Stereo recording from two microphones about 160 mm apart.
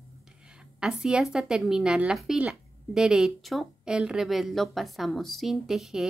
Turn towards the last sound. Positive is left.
turn(degrees=0)  # may be behind; listen again after turning